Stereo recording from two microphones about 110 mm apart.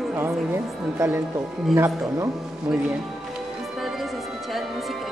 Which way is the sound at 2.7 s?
15° right (ahead or behind).